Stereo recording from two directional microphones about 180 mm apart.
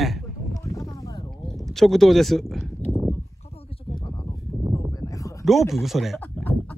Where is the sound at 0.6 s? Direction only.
20° left (ahead or behind).